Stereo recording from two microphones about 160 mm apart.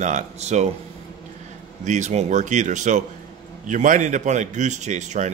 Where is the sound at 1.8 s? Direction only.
50° right (ahead or behind).